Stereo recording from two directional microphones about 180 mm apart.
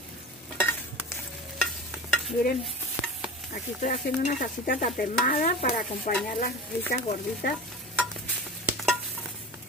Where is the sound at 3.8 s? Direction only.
45° left (ahead or behind).